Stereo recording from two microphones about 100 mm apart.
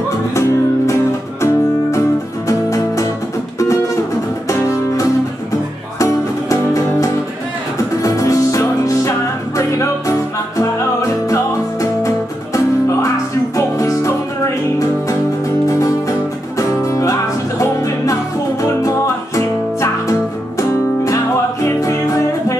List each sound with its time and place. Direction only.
1.4 s music: 30° left (ahead or behind)
12.5 s music: 30° left (ahead or behind)
21.6 s music: 30° left (ahead or behind)